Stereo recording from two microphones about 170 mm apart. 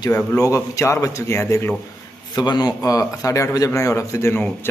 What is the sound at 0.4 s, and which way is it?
A man's voice, 20° left (ahead or behind).